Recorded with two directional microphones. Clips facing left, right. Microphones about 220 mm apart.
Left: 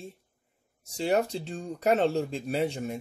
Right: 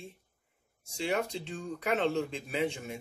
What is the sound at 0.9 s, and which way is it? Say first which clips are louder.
Speech: left 5 dB; 40° left (ahead or behind).